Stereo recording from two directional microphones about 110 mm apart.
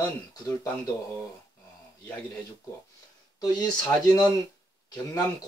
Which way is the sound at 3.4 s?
35° left (ahead or behind).